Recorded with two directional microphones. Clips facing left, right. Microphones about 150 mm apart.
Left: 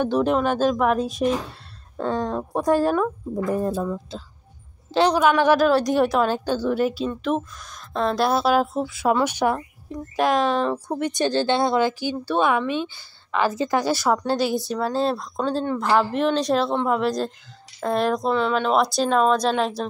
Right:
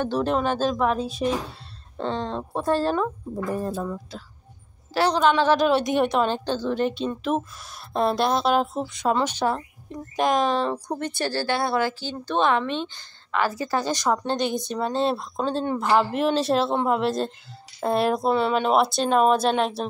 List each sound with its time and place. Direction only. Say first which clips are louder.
0.0 s a woman's voice: left 3 dB; 10° left (ahead or behind)
4.9 s a woman's voice: left 2 dB; 15° left (ahead or behind); by 8.2 s 10° right (ahead or behind)
8.2 s a woman's voice: left 4 dB; 5° left (ahead or behind)